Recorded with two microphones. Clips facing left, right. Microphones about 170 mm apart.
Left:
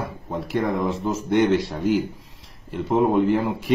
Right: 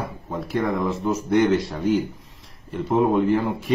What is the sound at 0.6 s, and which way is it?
Speech, centre (ahead or behind).